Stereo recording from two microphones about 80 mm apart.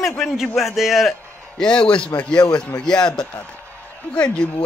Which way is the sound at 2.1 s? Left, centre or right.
Left.